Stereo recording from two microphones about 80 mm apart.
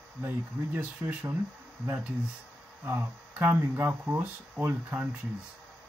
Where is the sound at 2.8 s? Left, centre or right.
Right.